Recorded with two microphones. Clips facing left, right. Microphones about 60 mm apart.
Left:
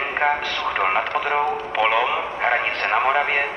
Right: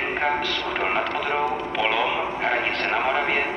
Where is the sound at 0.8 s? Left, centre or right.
Left.